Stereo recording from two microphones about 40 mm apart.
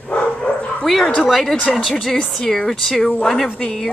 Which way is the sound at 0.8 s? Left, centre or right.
Centre.